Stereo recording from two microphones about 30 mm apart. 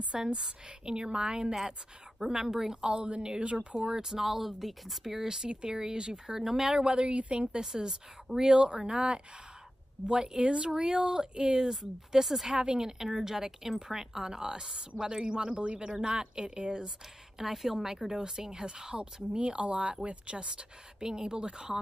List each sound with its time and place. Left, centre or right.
0.1 s a woman's voice: right
2.4 s a woman's voice: centre
2.9 s a woman's voice: right
3.2 s speech: right
3.8 s speech: right
4.2 s a woman's voice: centre
5.5 s speech: right
7.0 s speech: right
7.9 s a woman's voice: centre
8.5 s speech: right
10.8 s a woman's voice: right
12.5 s a woman's voice: right
16.2 s speech: right
17.4 s a woman's voice: centre; by 21.7 s right